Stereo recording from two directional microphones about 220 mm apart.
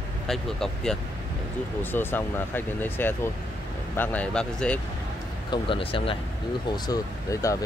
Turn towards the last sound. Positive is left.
turn(degrees=15)  # may be behind; listen again after turning